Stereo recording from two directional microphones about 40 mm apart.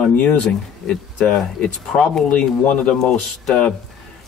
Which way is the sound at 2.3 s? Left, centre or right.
Left.